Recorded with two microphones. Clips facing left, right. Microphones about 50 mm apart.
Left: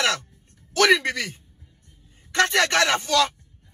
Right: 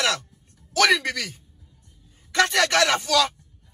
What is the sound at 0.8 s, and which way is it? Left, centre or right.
A man's voice, left.